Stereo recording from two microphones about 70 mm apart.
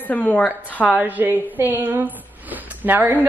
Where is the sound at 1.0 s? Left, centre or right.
Right.